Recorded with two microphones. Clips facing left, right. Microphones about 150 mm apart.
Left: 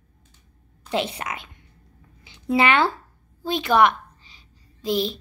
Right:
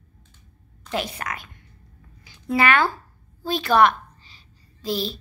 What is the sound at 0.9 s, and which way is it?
A woman's voice, 20° left (ahead or behind).